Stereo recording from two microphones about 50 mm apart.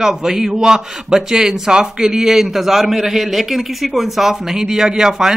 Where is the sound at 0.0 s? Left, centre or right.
Centre.